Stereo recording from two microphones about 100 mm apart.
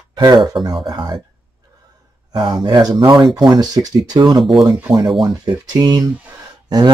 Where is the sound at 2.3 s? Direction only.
45° right (ahead or behind).